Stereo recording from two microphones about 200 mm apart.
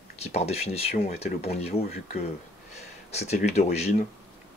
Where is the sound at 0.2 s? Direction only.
30° left (ahead or behind).